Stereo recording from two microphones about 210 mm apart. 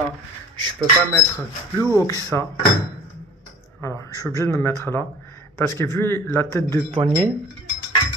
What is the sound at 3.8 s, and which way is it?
Speech, 10° left (ahead or behind).